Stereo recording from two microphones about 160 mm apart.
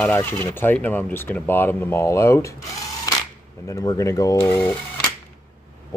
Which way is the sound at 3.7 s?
20° left (ahead or behind).